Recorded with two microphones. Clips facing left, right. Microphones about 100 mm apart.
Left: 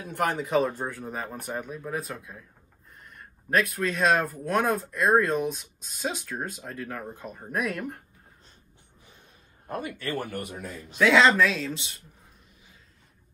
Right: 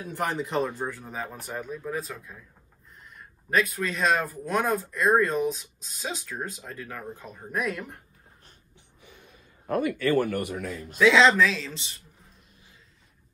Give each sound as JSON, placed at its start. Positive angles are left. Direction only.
{"t": 0.0, "sound": "speech", "side_deg": 0}
{"t": 0.7, "sound": "speech", "side_deg": 15}
{"t": 0.9, "sound": "speech", "side_deg": 5}
{"t": 9.0, "sound": "a sound", "side_deg": -60}
{"t": 11.0, "sound": "speech", "side_deg": 0}